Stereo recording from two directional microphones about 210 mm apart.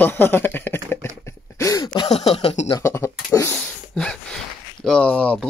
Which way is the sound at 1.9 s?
20° left (ahead or behind).